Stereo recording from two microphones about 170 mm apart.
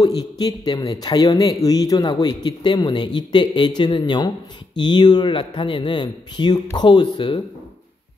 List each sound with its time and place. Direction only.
0.0 s speech: 20° left (ahead or behind)